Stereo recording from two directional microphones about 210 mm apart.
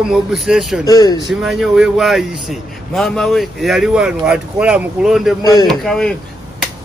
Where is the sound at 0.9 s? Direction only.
15° left (ahead or behind).